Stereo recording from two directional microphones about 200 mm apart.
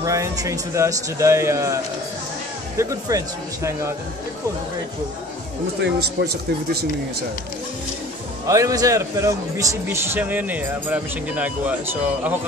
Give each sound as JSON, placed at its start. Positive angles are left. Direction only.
{"t": 0.0, "sound": "a man's voice", "side_deg": -15}
{"t": 2.8, "sound": "a man's voice", "side_deg": -15}
{"t": 5.8, "sound": "speech", "side_deg": -55}
{"t": 8.5, "sound": "a man's voice", "side_deg": -15}